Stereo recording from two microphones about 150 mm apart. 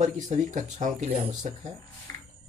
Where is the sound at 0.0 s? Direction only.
55° right (ahead or behind).